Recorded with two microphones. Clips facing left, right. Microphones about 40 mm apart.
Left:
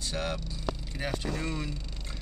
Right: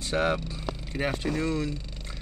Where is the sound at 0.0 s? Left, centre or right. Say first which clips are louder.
Right 8 dB; centre.